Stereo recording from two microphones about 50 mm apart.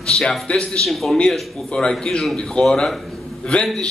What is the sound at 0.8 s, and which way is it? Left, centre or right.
A man's voice, centre.